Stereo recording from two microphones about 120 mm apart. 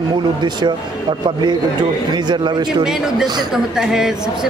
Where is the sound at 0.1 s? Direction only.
40° right (ahead or behind).